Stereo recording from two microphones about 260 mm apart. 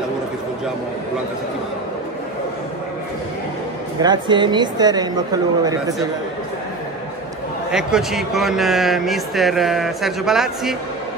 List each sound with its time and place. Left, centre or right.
4.0 s speech: centre
7.7 s speech: centre